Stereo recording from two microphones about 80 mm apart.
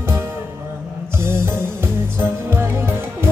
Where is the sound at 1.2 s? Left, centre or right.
Right.